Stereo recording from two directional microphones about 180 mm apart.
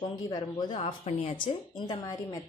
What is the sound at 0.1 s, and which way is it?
Speech, 25° left (ahead or behind).